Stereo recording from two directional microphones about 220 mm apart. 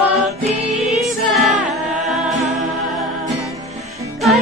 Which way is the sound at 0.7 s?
Centre (ahead or behind).